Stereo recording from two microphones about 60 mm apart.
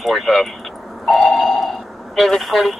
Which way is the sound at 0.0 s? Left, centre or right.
Centre.